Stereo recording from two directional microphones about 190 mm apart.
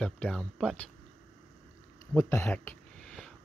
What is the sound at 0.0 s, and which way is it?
Speech, 5° left (ahead or behind).